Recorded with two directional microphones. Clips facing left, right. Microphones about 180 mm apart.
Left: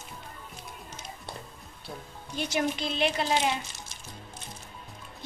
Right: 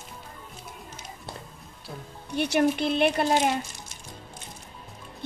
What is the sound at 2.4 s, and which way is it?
A woman's voice, 60° right (ahead or behind).